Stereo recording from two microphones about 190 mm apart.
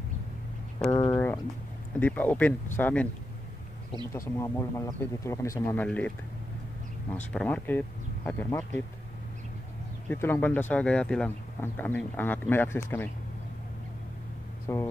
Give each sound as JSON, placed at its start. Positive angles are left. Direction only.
{"t": 1.1, "sound": "a sound", "side_deg": 10}
{"t": 2.0, "sound": "speech", "side_deg": 10}
{"t": 4.1, "sound": "speech", "side_deg": 15}
{"t": 7.3, "sound": "speech", "side_deg": 5}
{"t": 10.0, "sound": "speech", "side_deg": 10}
{"t": 14.7, "sound": "speech", "side_deg": 15}